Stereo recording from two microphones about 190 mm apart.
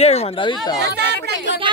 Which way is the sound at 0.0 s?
35° left (ahead or behind).